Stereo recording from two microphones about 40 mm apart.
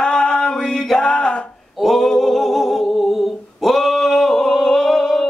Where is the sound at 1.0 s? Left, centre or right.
Left.